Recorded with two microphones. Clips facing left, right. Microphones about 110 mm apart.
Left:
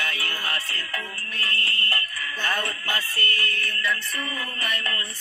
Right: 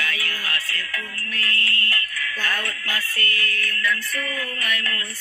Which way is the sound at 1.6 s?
50° right (ahead or behind).